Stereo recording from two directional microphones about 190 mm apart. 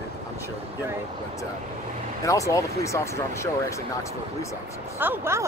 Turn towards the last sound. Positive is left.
turn(degrees=-10)  # may be behind; listen again after turning